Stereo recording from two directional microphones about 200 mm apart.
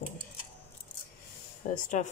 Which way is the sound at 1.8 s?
40° left (ahead or behind).